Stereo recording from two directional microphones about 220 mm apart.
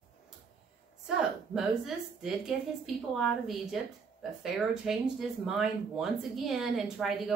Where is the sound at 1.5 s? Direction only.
Centre (ahead or behind).